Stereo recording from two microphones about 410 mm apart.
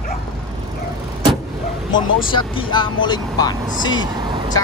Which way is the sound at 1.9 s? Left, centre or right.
Centre.